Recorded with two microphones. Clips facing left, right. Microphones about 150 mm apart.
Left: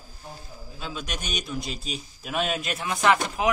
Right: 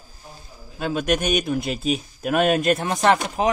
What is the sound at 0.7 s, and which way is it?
A man's voice, 60° right (ahead or behind).